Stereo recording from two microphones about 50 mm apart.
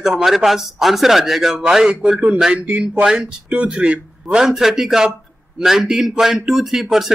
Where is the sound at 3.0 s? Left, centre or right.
Centre.